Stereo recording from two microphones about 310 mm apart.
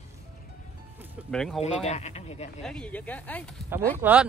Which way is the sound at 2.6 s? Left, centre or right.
Centre.